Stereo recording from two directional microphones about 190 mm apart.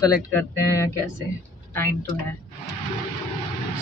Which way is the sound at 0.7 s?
15° left (ahead or behind).